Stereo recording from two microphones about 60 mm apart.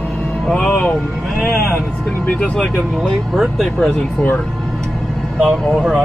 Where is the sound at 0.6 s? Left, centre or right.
Left.